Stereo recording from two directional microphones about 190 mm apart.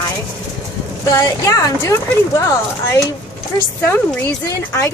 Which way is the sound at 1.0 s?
15° left (ahead or behind).